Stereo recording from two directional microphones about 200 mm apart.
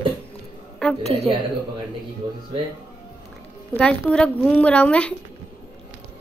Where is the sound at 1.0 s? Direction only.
30° right (ahead or behind).